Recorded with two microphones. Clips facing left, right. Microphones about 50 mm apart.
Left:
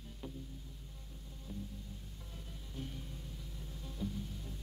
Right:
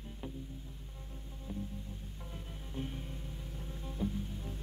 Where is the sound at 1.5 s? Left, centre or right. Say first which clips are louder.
Right 4 dB; right.